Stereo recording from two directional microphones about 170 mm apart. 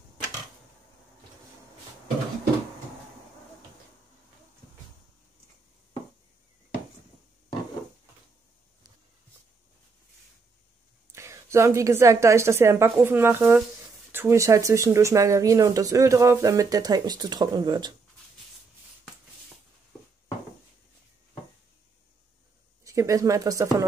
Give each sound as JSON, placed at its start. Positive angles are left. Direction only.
{"t": 11.1, "sound": "a woman's voice", "side_deg": -15}
{"t": 22.8, "sound": "speech", "side_deg": -20}